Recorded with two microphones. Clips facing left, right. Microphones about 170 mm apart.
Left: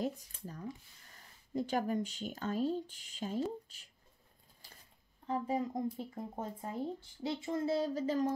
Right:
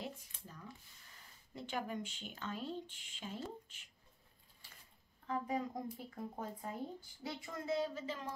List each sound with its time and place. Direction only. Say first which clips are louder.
0.0 s speech: left 10 dB; 40° left (ahead or behind)
5.2 s speech: left 4 dB; 30° left (ahead or behind)